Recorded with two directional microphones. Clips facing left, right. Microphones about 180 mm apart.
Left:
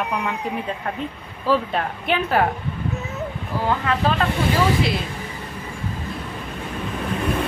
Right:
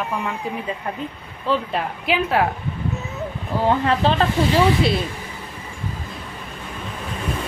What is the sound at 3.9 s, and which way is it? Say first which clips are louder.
Speech: right 2 dB; 30° right (ahead or behind).